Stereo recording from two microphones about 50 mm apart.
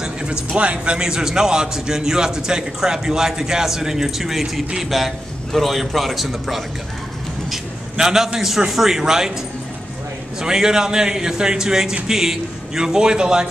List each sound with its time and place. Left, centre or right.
0.0 s a sound: centre
0.6 s a man's voice: right
10.4 s a man's voice: centre